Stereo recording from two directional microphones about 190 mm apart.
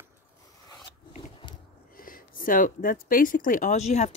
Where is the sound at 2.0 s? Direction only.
50° left (ahead or behind).